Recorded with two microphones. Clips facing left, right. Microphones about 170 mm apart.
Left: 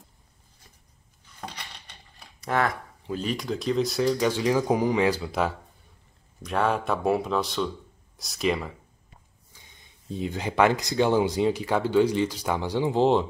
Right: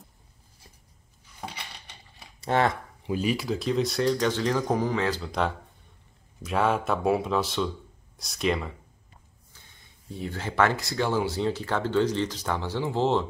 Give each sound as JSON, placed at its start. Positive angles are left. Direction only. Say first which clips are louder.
{"t": 1.4, "sound": "dishes", "louder": "even", "side_deg": -5}
{"t": 2.4, "sound": "speech", "louder": "right 2 dB", "side_deg": -25}
{"t": 3.1, "sound": "speech", "louder": "right 2 dB", "side_deg": -10}
{"t": 9.5, "sound": "speech", "louder": "left 2 dB", "side_deg": 15}